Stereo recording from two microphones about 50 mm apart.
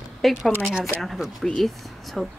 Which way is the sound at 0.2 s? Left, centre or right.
Centre.